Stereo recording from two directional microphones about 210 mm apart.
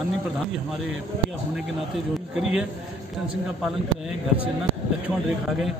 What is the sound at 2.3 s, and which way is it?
Speech, 5° right (ahead or behind).